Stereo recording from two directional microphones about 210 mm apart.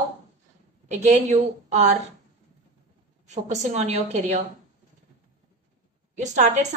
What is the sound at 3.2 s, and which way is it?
A woman's voice, 35° right (ahead or behind).